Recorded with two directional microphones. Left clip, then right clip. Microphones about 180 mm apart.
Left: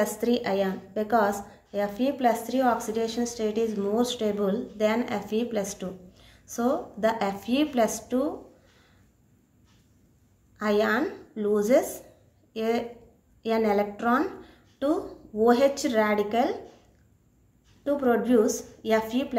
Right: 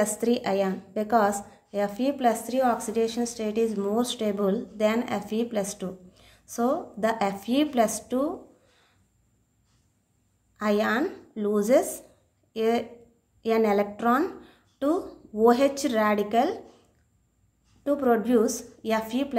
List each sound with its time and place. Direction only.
0.0 s a woman's voice: 40° right (ahead or behind)
10.6 s a woman's voice: 45° right (ahead or behind)
17.8 s a woman's voice: 45° right (ahead or behind)